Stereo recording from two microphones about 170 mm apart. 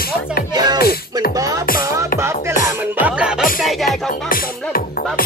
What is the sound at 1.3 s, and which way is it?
Music, 20° right (ahead or behind).